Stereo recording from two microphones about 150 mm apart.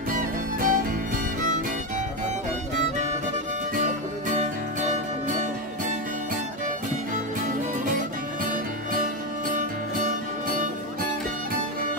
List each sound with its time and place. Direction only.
0.1 s music: 70° right (ahead or behind)
4.4 s music: 55° right (ahead or behind)
8.9 s music: 60° right (ahead or behind)